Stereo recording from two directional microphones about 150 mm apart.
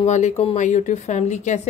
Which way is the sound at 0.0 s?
50° left (ahead or behind).